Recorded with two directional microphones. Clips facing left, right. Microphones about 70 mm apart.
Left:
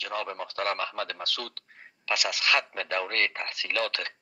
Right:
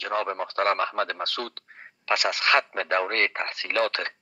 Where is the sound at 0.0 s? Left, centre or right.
Right.